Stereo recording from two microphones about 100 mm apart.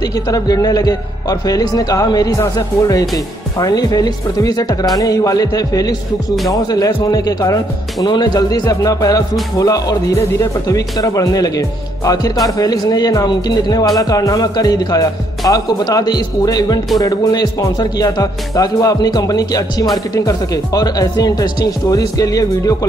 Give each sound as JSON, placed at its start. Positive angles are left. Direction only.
{"t": 0.3, "sound": "speech", "side_deg": 40}